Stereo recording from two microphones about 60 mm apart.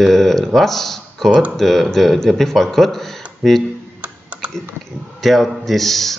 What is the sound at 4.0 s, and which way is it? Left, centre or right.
Typing, right.